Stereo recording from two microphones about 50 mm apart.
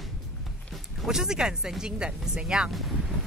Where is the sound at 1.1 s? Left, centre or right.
Centre.